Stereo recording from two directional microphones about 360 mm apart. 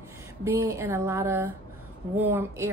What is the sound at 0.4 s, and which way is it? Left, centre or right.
A woman's voice, centre.